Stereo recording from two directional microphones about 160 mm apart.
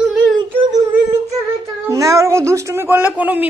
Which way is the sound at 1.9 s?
20° right (ahead or behind).